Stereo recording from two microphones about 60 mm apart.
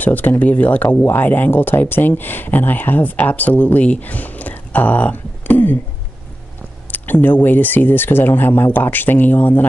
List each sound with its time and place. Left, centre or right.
0.0 s speech: left
6.9 s speech: left